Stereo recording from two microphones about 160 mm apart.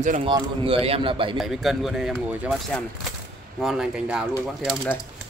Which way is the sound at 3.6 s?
5° right (ahead or behind).